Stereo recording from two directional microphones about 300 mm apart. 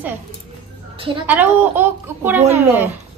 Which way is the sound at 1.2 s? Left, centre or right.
Centre.